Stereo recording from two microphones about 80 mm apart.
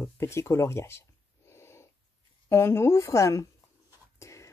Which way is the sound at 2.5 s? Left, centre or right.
Left.